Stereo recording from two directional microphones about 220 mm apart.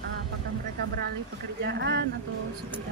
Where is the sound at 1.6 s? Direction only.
50° right (ahead or behind).